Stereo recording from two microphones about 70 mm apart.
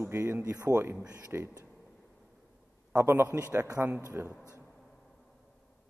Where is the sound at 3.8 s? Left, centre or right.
Right.